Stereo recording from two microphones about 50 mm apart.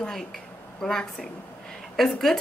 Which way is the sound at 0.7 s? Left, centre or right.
Centre.